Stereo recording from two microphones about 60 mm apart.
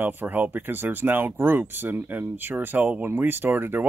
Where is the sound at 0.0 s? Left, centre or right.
Right.